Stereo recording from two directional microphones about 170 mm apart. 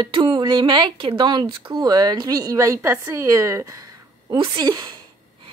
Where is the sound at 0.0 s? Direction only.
30° right (ahead or behind).